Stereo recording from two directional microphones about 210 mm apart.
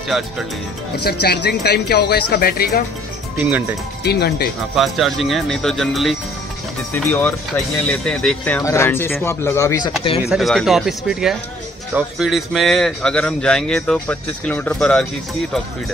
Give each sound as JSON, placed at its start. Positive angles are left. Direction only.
{"t": 0.1, "sound": "speech", "side_deg": 0}
{"t": 1.2, "sound": "speech", "side_deg": 50}
{"t": 3.3, "sound": "speech", "side_deg": -10}
{"t": 4.0, "sound": "speech", "side_deg": 50}
{"t": 4.7, "sound": "speech", "side_deg": 0}
{"t": 10.2, "sound": "speech", "side_deg": 0}